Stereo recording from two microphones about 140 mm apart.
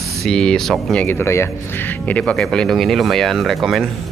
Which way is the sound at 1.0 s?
15° left (ahead or behind).